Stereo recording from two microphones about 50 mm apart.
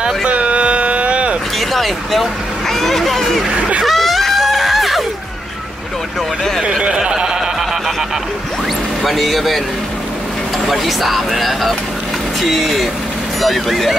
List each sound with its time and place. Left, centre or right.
0.0 s a sound: right
1.7 s speech: centre
3.5 s speech: right
3.8 s screaming: centre
6.8 s a sound: centre
9.0 s speech: centre
10.7 s speech: centre